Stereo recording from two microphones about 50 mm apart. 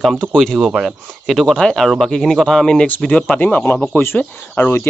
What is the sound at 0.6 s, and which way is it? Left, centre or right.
Speech, centre.